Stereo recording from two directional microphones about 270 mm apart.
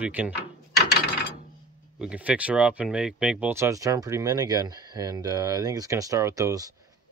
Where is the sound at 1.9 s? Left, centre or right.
Centre.